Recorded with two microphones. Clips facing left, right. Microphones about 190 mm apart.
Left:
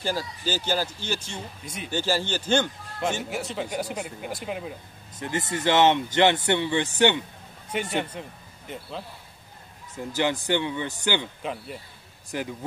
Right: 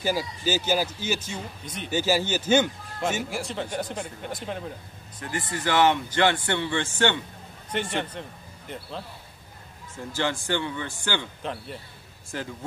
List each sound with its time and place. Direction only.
0.0 s a man's voice: 10° right (ahead or behind); by 4.7 s 5° left (ahead or behind)
5.5 s speech: 20° left (ahead or behind); by 9.0 s centre (ahead or behind)
10.0 s speech: 15° left (ahead or behind)
11.4 s speech: 5° left (ahead or behind)
12.3 s speech: 15° left (ahead or behind)